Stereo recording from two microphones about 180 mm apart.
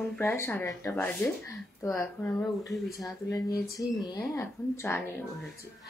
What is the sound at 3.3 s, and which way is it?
Speech, 20° left (ahead or behind).